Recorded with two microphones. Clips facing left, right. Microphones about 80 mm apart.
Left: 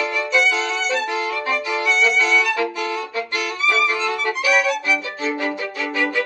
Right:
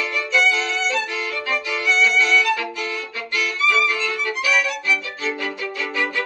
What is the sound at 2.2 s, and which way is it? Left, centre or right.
Music, left.